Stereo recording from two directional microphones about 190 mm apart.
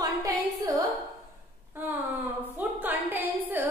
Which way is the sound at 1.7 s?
10° right (ahead or behind).